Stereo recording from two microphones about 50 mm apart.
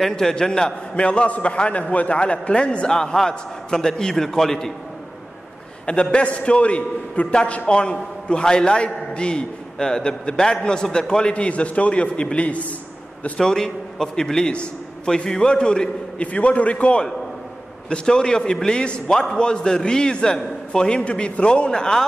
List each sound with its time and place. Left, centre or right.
0.0 s a man's voice: centre
5.9 s a man's voice: left
13.4 s a man's voice: centre
16.3 s a man's voice: left